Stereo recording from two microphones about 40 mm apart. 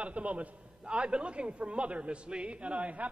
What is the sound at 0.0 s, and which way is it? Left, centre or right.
A man's voice, right.